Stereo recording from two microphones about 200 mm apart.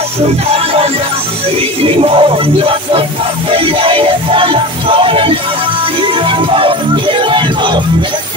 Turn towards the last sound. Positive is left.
turn(degrees=-25)  # may be behind; listen again after turning